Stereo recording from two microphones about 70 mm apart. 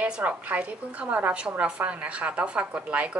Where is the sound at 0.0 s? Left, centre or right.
Centre.